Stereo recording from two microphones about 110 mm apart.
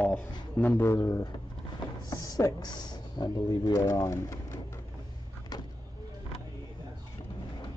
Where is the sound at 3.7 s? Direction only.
30° left (ahead or behind).